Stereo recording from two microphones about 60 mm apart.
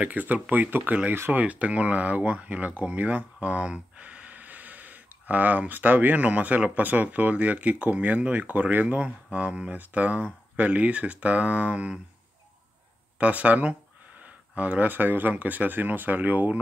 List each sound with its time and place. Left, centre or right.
0.0 s speech: right
13.2 s speech: right